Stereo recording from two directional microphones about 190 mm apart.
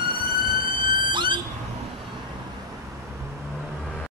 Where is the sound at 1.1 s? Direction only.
25° right (ahead or behind).